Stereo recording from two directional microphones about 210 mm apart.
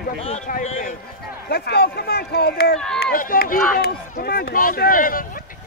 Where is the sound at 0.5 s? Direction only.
40° left (ahead or behind).